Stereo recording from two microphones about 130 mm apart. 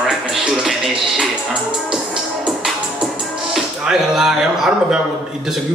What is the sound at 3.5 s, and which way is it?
Speech, centre (ahead or behind).